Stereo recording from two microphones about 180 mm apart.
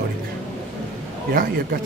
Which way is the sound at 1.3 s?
50° right (ahead or behind).